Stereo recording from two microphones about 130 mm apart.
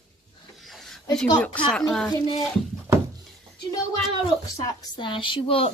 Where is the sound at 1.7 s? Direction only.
5° left (ahead or behind).